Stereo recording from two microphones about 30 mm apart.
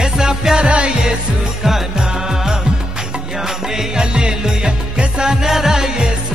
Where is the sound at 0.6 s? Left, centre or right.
Right.